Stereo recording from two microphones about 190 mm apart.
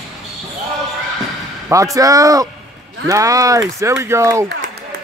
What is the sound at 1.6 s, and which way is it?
Speech, 15° right (ahead or behind).